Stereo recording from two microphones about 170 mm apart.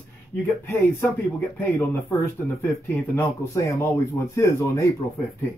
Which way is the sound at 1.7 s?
15° left (ahead or behind).